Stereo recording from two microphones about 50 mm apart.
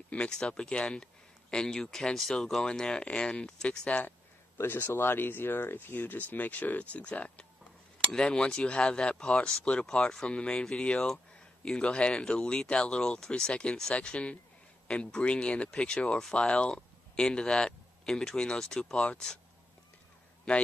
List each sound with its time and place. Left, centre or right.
0.3 s speech: centre
4.6 s speech: left; by 19.0 s centre
20.5 s speech: centre